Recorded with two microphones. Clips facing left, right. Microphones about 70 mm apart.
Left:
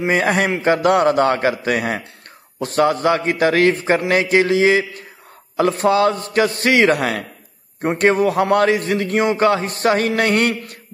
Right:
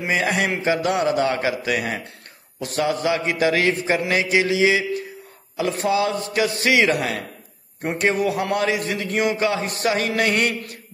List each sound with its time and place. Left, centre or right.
0.1 s a man's voice: left